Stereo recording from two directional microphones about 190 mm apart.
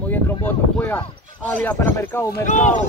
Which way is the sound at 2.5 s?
40° left (ahead or behind).